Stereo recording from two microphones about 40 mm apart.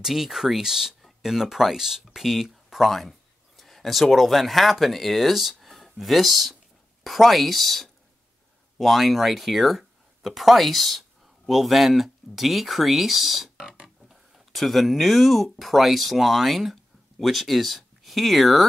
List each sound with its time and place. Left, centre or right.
0.0 s speech: centre
13.6 s a sound: centre
14.0 s speech: centre